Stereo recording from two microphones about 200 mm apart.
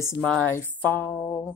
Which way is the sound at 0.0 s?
15° left (ahead or behind).